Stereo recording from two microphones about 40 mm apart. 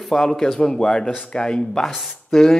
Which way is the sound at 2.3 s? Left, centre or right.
Centre.